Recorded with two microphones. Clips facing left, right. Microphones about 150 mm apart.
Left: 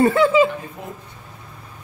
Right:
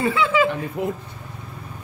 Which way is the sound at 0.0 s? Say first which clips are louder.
Left 6 dB; 45° left (ahead or behind).